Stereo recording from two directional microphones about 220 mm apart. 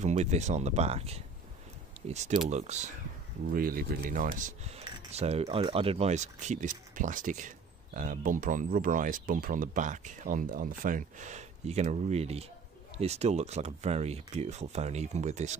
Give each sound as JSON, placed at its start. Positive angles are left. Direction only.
{"t": 0.0, "sound": "speech", "side_deg": -30}
{"t": 3.5, "sound": "speech", "side_deg": -40}